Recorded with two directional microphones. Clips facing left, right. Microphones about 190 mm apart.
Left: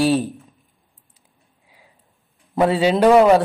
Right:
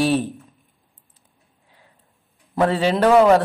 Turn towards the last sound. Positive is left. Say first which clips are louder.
# left 1 dB
turn(degrees=10)  # may be behind; listen again after turning